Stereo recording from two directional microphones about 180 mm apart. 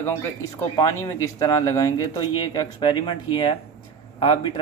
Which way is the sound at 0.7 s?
20° left (ahead or behind).